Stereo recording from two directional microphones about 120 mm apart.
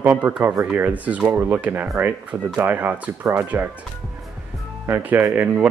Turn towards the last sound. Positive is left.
turn(degrees=-15)  # may be behind; listen again after turning